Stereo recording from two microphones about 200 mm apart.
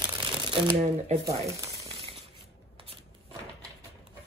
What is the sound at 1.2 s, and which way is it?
Speech, 15° right (ahead or behind).